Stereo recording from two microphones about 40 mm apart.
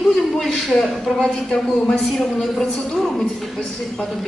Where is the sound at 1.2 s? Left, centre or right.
Left.